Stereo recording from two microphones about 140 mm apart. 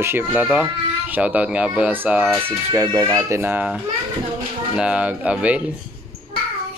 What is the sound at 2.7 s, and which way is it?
Speech, 25° right (ahead or behind).